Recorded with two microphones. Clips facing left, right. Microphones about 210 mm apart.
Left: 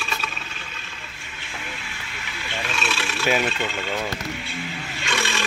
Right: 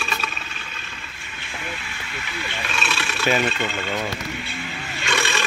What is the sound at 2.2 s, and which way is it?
Wild animals, 60° right (ahead or behind).